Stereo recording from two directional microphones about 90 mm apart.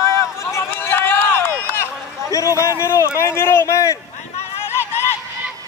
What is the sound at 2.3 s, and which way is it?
A man's voice, 35° left (ahead or behind).